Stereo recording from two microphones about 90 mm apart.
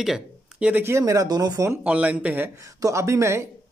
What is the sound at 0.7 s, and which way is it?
Speech, 30° right (ahead or behind).